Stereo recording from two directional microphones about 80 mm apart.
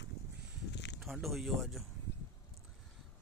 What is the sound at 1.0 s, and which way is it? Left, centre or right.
Speech, centre.